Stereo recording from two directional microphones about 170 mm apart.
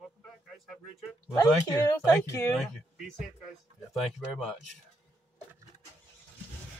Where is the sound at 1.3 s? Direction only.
20° left (ahead or behind).